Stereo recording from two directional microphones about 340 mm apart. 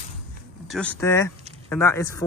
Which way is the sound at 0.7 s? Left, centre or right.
Centre.